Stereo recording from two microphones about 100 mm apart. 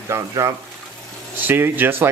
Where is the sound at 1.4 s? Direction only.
20° right (ahead or behind).